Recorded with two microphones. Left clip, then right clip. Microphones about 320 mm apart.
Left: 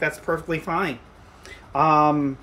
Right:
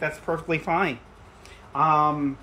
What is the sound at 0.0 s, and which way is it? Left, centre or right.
Speech, centre.